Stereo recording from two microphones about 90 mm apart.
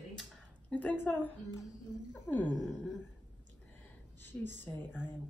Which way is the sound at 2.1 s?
20° left (ahead or behind).